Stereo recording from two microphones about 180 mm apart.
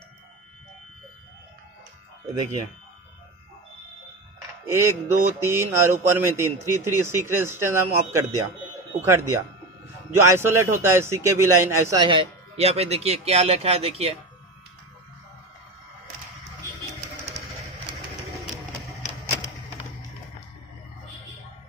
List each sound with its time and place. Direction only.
4.6 s a man's voice: 15° right (ahead or behind)
12.5 s speech: 35° right (ahead or behind)